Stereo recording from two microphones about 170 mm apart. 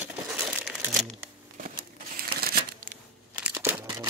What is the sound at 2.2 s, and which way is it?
Crumpling, 65° right (ahead or behind).